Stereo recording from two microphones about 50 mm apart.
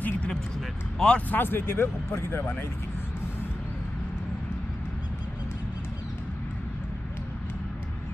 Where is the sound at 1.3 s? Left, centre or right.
Left.